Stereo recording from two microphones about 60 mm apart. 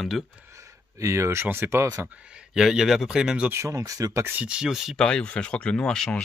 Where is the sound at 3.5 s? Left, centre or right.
Right.